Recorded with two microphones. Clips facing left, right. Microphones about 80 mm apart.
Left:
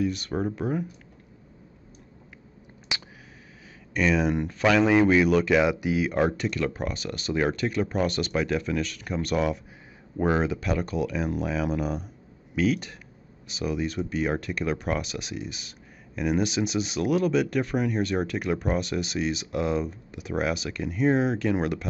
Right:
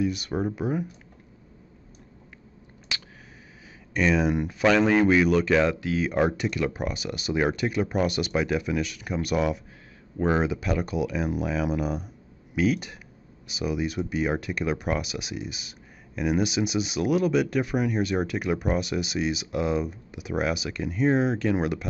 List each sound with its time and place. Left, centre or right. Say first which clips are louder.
0.0 s speech: even; centre
2.9 s a sound: left 1 dB; centre
3.9 s speech: right 1 dB; centre
6.0 s speech: right 4 dB; centre